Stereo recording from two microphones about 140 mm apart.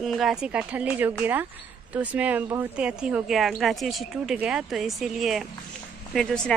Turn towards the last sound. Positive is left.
turn(degrees=0)  # may be behind; listen again after turning